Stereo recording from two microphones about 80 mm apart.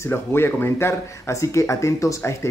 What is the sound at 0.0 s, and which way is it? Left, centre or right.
Speech, left.